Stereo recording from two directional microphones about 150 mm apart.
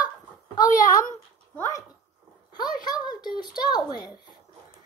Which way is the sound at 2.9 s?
30° left (ahead or behind).